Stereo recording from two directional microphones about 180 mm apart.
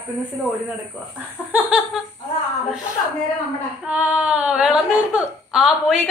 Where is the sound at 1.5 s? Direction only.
5° right (ahead or behind).